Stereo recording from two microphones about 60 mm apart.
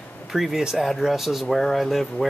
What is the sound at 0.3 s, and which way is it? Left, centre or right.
Speech, centre.